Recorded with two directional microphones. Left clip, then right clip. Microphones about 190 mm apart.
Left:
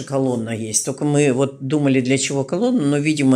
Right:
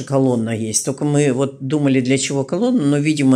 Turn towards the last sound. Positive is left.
turn(degrees=-5)  # may be behind; listen again after turning